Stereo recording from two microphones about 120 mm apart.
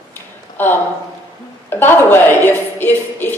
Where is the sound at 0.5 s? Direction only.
15° left (ahead or behind).